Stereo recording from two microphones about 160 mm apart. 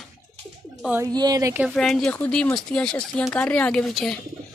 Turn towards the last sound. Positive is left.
turn(degrees=0)  # may be behind; listen again after turning